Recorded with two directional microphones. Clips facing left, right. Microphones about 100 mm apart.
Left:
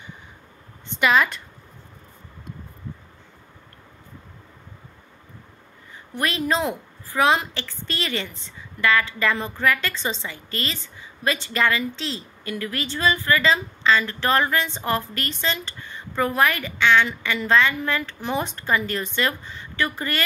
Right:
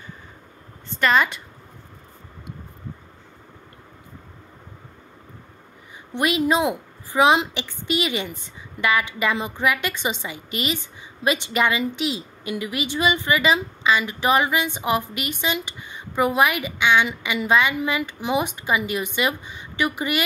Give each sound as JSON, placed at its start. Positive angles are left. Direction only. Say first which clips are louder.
{"t": 0.9, "sound": "a woman's voice", "louder": "even", "side_deg": 5}
{"t": 6.1, "sound": "a woman's voice", "louder": "right 3 dB", "side_deg": -20}